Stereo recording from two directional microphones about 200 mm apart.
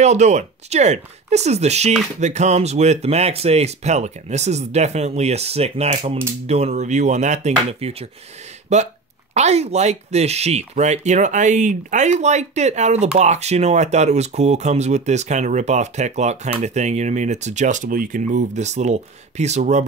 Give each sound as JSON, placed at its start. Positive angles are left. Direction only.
{"t": 0.0, "sound": "speech", "side_deg": -35}